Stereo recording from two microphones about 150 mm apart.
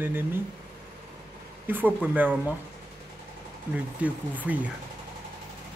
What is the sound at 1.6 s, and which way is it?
Speech, 10° right (ahead or behind).